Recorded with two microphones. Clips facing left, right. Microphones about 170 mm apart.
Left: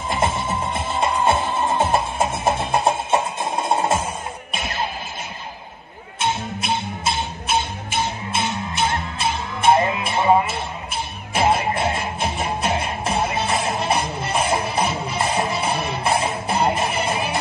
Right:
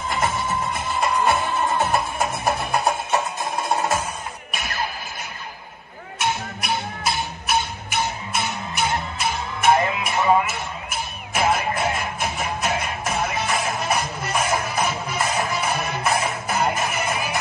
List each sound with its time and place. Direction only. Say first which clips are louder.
0.1 s music: left 2 dB; 25° left (ahead or behind)
6.1 s music: left 2 dB; 25° left (ahead or behind)